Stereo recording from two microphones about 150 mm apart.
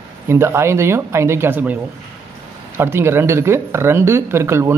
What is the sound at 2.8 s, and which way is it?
Speech, 15° right (ahead or behind).